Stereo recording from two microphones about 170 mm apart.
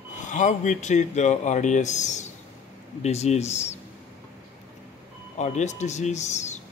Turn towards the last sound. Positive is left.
turn(degrees=45)  # may be behind; listen again after turning